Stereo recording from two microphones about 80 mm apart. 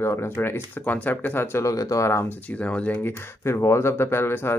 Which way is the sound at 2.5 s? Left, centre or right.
Centre.